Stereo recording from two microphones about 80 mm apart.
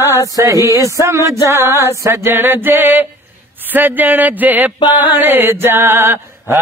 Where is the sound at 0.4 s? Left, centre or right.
Right.